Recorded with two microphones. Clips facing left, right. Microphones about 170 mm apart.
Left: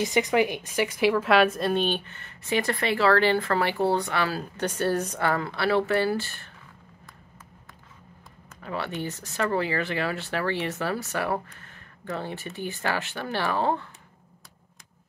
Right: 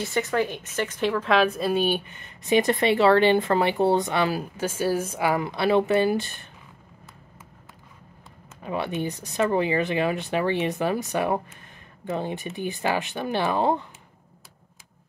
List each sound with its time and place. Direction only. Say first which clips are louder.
0.0 s speech: left 2 dB; 15° left (ahead or behind); by 4.5 s 20° right (ahead or behind)
4.6 s speech: left 1 dB; 5° right (ahead or behind)
8.6 s speech: right 4 dB; 15° right (ahead or behind)